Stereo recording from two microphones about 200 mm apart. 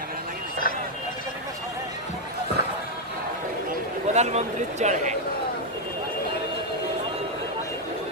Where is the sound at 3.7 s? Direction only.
35° right (ahead or behind).